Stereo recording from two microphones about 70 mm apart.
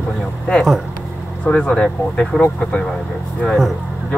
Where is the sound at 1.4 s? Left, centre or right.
Centre.